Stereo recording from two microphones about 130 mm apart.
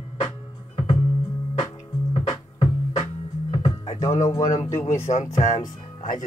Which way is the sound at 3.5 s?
50° left (ahead or behind).